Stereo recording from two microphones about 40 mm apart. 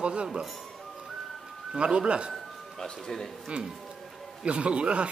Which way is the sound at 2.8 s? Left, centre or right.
Centre.